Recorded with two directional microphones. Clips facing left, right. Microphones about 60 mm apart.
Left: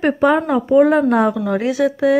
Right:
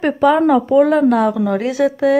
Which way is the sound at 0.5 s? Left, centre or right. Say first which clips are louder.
Right 1 dB; centre.